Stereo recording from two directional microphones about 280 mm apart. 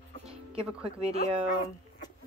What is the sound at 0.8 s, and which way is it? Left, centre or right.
Speech, right.